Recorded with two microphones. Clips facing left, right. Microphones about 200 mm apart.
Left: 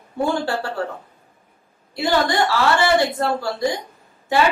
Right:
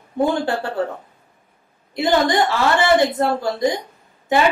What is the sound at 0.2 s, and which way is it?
Speech, 20° right (ahead or behind).